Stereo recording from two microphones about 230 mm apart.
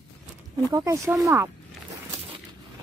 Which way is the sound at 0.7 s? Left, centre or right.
Centre.